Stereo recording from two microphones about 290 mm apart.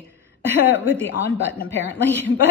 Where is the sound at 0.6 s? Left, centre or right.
Centre.